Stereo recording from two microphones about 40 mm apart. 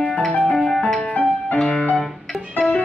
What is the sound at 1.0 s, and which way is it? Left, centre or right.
Music, left.